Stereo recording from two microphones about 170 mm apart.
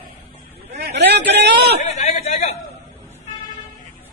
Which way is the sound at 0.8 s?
90° right.